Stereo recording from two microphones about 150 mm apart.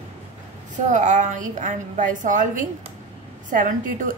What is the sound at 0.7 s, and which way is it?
A woman's voice, 55° right (ahead or behind).